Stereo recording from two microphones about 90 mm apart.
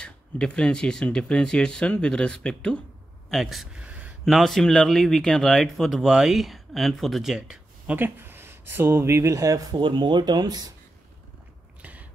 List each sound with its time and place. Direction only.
0.0 s speech: 10° left (ahead or behind)
3.3 s speech: centre (ahead or behind)
3.8 s a sound: 15° right (ahead or behind)
4.2 s speech: centre (ahead or behind)
7.9 s speech: 20° right (ahead or behind); by 9.8 s 40° right (ahead or behind)
9.8 s speech: 60° right (ahead or behind)
11.8 s a sound: 15° right (ahead or behind)